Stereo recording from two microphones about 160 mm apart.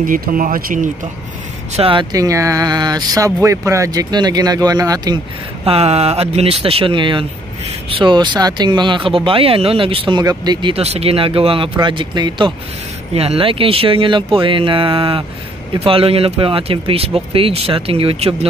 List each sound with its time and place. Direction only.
0.0 s speech: 60° right (ahead or behind)
1.8 s speech: 35° right (ahead or behind)
2.1 s speech: 20° right (ahead or behind)
5.7 s speech: 40° right (ahead or behind)